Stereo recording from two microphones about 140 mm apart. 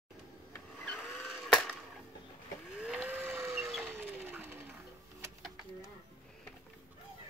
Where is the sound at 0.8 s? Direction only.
Centre (ahead or behind).